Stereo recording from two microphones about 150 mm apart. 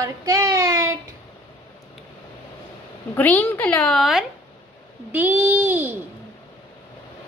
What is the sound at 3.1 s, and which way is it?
Speech, 10° left (ahead or behind).